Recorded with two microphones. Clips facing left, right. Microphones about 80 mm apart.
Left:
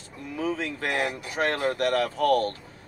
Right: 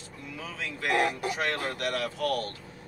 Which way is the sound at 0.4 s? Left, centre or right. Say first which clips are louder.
Left 8 dB; left.